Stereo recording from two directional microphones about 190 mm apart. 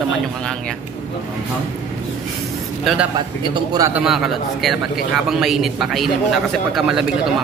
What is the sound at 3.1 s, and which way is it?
Speech, 25° right (ahead or behind).